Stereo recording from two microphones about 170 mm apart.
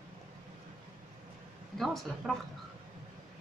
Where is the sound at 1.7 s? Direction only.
Centre (ahead or behind).